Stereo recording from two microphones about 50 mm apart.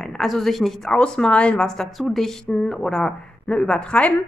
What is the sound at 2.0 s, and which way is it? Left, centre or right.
A woman's voice, centre.